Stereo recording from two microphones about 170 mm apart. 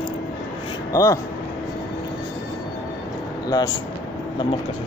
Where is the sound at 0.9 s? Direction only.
20° left (ahead or behind).